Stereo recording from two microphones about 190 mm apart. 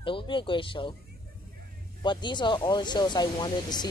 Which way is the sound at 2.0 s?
25° left (ahead or behind).